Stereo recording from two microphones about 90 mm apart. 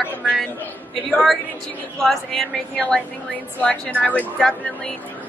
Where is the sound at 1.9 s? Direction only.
5° left (ahead or behind).